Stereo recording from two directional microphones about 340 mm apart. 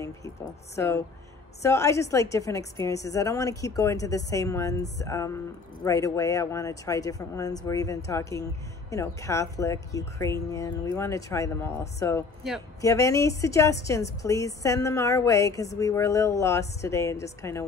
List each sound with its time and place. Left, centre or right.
0.7 s speech: centre